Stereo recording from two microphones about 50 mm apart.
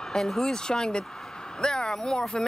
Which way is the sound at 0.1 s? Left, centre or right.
Centre.